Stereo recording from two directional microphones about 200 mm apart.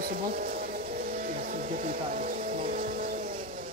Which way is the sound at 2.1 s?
40° right (ahead or behind).